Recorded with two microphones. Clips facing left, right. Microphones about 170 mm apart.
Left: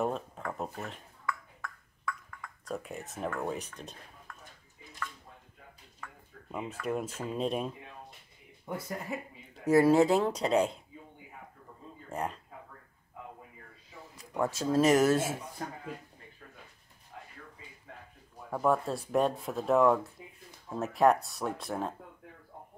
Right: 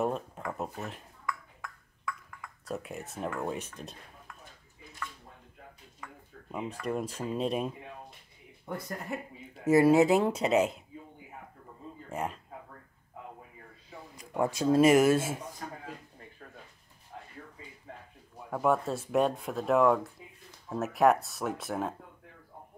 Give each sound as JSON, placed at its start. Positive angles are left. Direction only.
{"t": 0.0, "sound": "speech", "side_deg": 0}
{"t": 1.6, "sound": "ping", "side_deg": -5}
{"t": 3.3, "sound": "speech", "side_deg": 0}
{"t": 6.0, "sound": "a sound", "side_deg": -15}
{"t": 6.5, "sound": "speech", "side_deg": 0}
{"t": 9.7, "sound": "speech", "side_deg": -10}
{"t": 12.1, "sound": "speech", "side_deg": -5}
{"t": 14.1, "sound": "speech", "side_deg": -15}
{"t": 17.1, "sound": "a sound", "side_deg": -40}
{"t": 18.5, "sound": "speech", "side_deg": 0}